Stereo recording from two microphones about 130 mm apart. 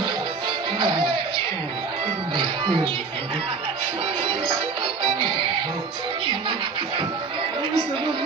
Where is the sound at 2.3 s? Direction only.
40° right (ahead or behind).